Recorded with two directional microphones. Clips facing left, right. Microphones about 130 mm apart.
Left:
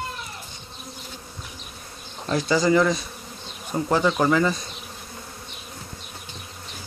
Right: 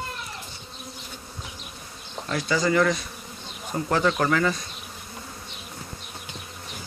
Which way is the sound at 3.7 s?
20° left (ahead or behind).